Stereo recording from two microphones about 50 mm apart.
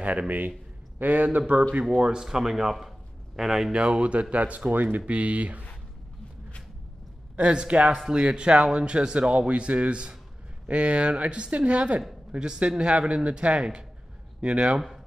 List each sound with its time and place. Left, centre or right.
0.0 s a man's voice: right
2.0 s speech: centre
3.7 s speech: right
7.3 s speech: right